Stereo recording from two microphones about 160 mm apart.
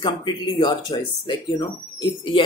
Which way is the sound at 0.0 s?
25° left (ahead or behind).